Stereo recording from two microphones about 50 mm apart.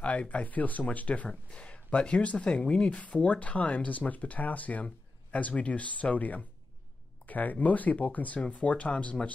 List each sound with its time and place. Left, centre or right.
0.0 s speech: left